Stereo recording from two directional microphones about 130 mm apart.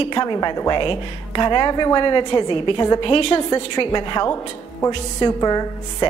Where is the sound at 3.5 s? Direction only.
35° left (ahead or behind).